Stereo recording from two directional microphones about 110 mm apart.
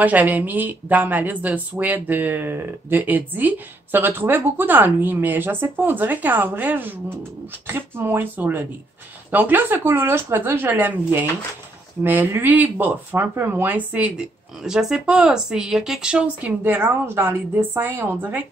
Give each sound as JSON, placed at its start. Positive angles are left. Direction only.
{"t": 0.0, "sound": "speech", "side_deg": -15}